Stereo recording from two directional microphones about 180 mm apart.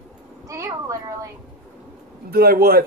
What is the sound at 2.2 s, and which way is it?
Speech, 55° right (ahead or behind).